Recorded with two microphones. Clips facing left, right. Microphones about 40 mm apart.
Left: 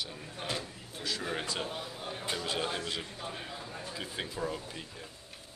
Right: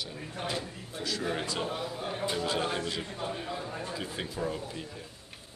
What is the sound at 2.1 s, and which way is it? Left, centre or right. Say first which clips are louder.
Speech: right 4 dB; centre.